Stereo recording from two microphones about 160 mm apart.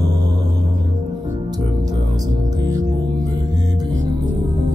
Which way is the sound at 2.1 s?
25° right (ahead or behind).